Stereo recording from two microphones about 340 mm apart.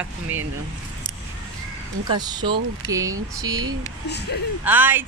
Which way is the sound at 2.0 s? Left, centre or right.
Centre.